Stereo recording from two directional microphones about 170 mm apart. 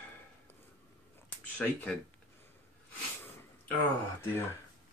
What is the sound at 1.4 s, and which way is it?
Speech, 10° left (ahead or behind).